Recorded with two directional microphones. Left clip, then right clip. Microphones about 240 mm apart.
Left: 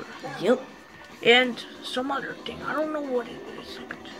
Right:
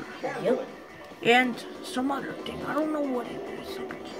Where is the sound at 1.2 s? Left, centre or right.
Centre.